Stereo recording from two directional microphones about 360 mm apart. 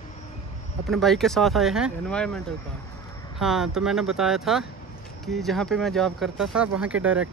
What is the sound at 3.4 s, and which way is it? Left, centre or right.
Speech, centre.